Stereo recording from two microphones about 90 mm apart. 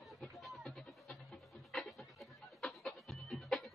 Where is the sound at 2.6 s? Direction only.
5° left (ahead or behind).